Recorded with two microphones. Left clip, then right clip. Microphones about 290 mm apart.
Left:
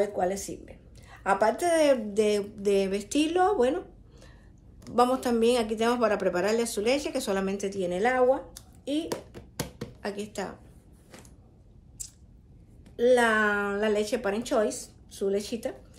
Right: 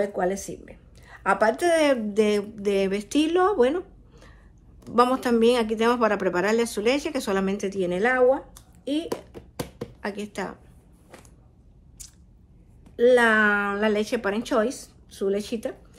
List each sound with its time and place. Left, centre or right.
0.0 s speech: right
9.1 s tap: centre
10.0 s speech: right
12.0 s biting: right
12.9 s speech: right